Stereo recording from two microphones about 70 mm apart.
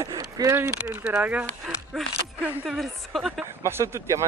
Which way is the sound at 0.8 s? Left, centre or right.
Centre.